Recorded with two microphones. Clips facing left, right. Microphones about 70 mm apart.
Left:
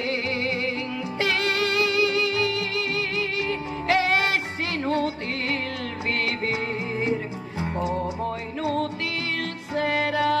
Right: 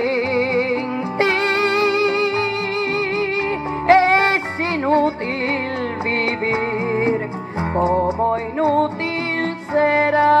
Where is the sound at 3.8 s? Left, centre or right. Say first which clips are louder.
Right 9 dB; right.